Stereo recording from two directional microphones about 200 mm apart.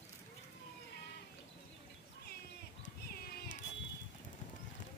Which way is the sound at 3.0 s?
50° left (ahead or behind).